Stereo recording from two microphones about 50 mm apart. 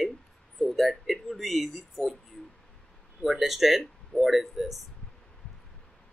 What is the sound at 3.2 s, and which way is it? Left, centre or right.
Speech, centre.